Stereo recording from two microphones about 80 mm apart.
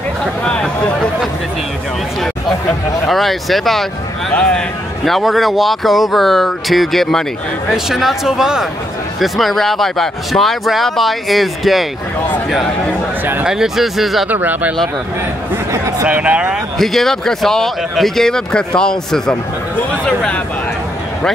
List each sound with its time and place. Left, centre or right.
0.5 s speech: centre
3.1 s a man's voice: centre
13.2 s speech: right
13.5 s a man's voice: centre
14.3 s speech: right
15.7 s a sound: right
16.1 s speech: centre
16.7 s a man's voice: centre